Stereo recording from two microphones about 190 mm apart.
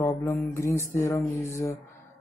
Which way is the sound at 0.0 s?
15° left (ahead or behind).